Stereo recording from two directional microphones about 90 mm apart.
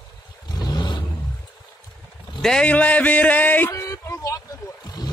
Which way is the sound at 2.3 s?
5° left (ahead or behind).